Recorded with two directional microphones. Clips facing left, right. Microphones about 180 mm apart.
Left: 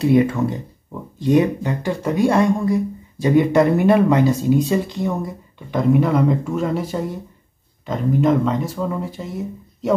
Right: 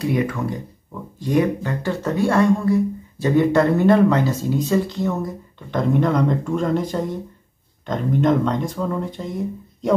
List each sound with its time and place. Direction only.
0.0 s speech: 25° left (ahead or behind); by 9.9 s 5° left (ahead or behind)